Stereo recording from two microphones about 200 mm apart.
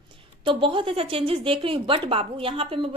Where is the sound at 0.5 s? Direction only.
25° right (ahead or behind).